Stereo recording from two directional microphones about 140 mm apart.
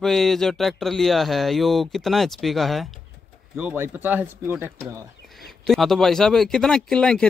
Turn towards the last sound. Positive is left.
turn(degrees=5)  # may be behind; listen again after turning